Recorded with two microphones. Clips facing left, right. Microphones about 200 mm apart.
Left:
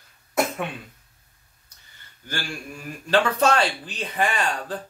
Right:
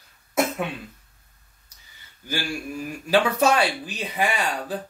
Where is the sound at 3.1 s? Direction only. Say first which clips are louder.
Even; 10° right (ahead or behind).